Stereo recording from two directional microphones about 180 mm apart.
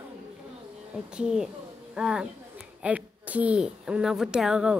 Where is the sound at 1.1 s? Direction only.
5° right (ahead or behind).